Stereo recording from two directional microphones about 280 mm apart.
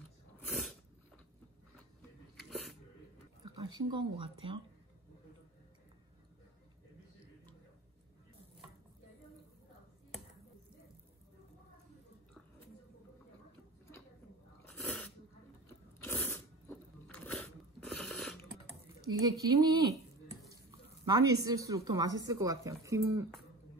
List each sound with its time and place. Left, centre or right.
0.5 s sneeze: centre
1.8 s biting: centre
3.5 s speech: centre
14.8 s sneeze: centre
16.0 s biting: centre
18.7 s typing: centre
21.0 s a woman's voice: centre